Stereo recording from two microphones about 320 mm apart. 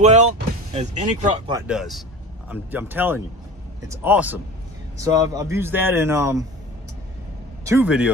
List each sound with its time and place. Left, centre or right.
0.0 s speech: right
1.5 s speech: centre
7.6 s speech: centre